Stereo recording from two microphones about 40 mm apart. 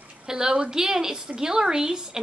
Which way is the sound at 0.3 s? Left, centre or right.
Centre.